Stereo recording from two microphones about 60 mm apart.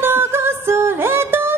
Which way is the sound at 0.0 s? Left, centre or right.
Right.